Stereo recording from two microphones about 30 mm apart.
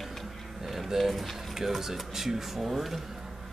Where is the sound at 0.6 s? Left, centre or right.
Centre.